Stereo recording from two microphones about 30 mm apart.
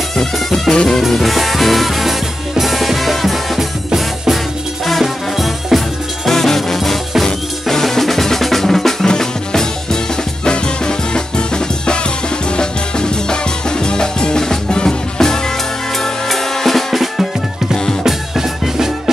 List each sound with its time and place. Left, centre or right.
0.2 s music: centre
1.1 s music: centre
5.0 s music: centre
6.2 s music: centre
7.7 s drum: centre
9.0 s music: left
16.0 s drum: centre
16.9 s music: centre